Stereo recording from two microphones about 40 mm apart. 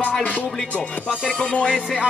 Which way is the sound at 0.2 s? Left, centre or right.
Left.